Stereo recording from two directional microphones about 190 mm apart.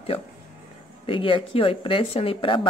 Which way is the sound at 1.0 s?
25° left (ahead or behind).